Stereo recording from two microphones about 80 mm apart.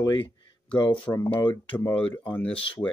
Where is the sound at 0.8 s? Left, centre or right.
Left.